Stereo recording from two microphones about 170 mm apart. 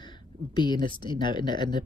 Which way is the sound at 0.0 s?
25° left (ahead or behind).